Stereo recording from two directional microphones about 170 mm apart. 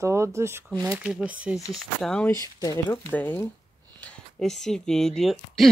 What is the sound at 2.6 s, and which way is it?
Speech, 20° left (ahead or behind).